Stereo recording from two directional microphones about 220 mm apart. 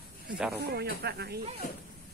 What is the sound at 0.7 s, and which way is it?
Speech, 45° right (ahead or behind).